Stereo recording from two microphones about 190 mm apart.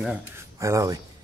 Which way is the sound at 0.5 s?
15° right (ahead or behind).